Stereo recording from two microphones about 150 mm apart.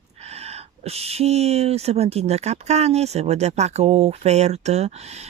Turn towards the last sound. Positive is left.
turn(degrees=-45)  # may be behind; listen again after turning